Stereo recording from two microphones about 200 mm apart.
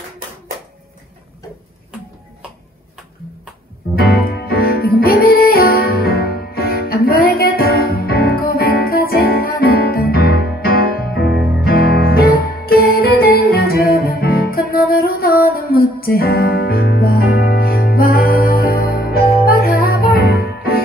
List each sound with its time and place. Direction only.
3.9 s music: 50° left (ahead or behind)